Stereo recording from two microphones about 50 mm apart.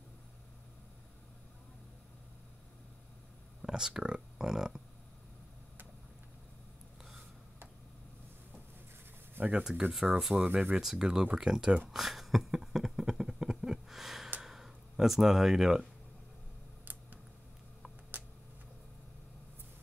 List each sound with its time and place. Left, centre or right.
3.6 s speech: centre
9.5 s speech: centre
10.4 s speech: right
10.8 s speech: centre
11.9 s a sound: centre